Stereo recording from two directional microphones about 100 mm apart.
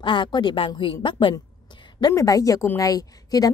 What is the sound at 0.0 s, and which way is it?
Speech, 50° left (ahead or behind).